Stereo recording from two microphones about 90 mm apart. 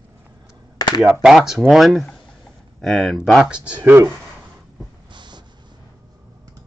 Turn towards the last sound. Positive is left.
turn(degrees=-55)  # may be behind; listen again after turning